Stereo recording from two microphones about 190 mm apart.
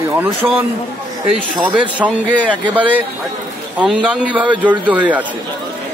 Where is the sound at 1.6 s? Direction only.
5° right (ahead or behind).